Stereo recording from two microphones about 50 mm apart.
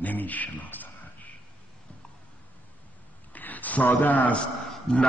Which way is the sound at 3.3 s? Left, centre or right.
Left.